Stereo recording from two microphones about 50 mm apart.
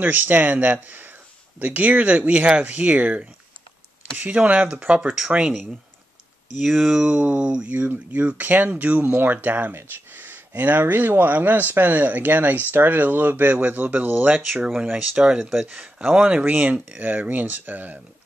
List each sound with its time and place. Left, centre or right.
0.0 s speech: right; by 4.7 s centre
4.7 s speech: right
6.6 s speech: centre
7.0 s speech: right
9.7 s speech: right
14.5 s speech: centre
14.9 s speech: right
16.0 s speech: centre; by 18.0 s right